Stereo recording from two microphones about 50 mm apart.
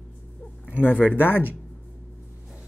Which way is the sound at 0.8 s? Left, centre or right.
Left.